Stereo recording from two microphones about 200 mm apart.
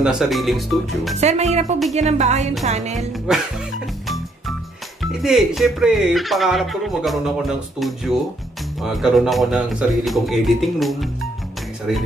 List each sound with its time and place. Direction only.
0.0 s speech: centre (ahead or behind)
1.1 s speech: 35° right (ahead or behind)
5.0 s speech: centre (ahead or behind)